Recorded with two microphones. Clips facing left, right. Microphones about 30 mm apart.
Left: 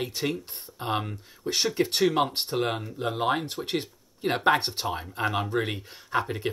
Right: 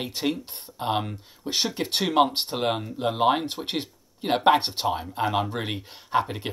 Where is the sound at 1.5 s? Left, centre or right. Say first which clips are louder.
Left 1 dB; right.